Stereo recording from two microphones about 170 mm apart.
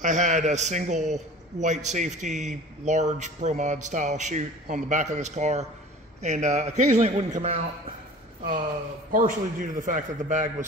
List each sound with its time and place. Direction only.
0.0 s a man's voice: 45° right (ahead or behind)
9.1 s a man's voice: 50° right (ahead or behind)